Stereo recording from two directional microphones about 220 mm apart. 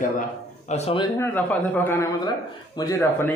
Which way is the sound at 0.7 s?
30° left (ahead or behind).